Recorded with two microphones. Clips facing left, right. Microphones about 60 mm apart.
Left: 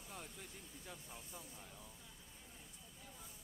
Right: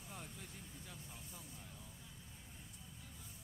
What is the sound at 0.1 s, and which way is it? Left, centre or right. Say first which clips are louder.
Vehicle: even; centre.